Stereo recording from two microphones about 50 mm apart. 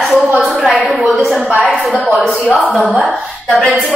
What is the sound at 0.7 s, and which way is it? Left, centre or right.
Speech, right.